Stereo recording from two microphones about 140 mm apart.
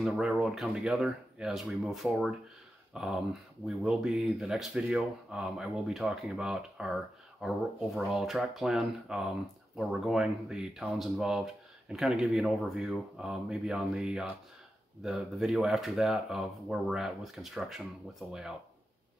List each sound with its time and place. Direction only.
0.0 s speech: 5° right (ahead or behind)